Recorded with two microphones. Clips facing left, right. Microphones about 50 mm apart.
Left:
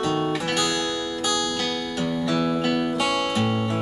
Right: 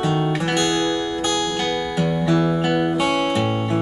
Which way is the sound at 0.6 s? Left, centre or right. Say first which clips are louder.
Right 5 dB; right.